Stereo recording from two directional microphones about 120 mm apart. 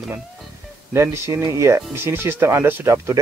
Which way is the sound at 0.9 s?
20° right (ahead or behind).